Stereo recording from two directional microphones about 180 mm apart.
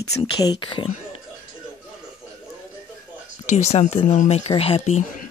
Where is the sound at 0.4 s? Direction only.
25° left (ahead or behind).